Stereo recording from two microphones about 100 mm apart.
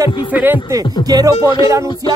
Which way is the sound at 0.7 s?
35° right (ahead or behind).